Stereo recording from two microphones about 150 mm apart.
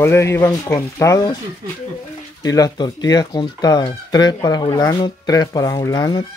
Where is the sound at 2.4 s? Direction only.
25° left (ahead or behind).